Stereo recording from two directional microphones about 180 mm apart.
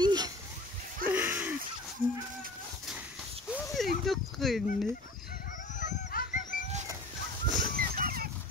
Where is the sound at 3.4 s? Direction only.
Centre (ahead or behind).